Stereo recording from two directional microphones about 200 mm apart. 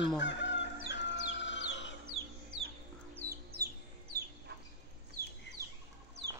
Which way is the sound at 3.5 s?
90° right.